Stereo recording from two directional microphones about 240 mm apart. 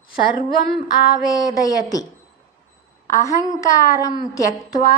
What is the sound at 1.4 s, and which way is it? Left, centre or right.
Speech, centre.